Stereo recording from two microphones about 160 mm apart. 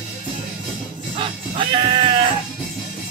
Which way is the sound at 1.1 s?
30° right (ahead or behind).